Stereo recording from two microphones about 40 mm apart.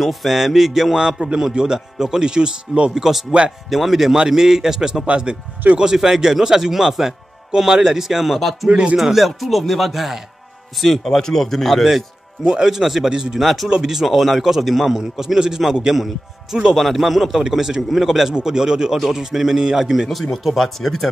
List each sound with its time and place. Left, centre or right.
0.0 s speech: centre
0.9 s speech: centre
2.9 s speech: centre
5.9 s speech: centre
11.1 s speech: centre
12.4 s speech: centre
13.4 s speech: centre
13.7 s speech: centre
16.7 s speech: centre
18.9 s speech: centre
20.1 s speech: centre